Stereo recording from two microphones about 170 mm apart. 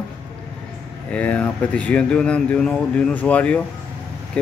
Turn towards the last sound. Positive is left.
turn(degrees=10)  # may be behind; listen again after turning